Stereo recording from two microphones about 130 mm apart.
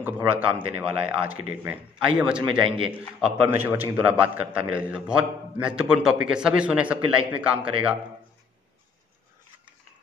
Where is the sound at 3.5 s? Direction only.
15° right (ahead or behind).